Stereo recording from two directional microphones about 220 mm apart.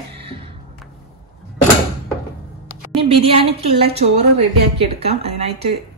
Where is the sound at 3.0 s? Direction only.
25° right (ahead or behind).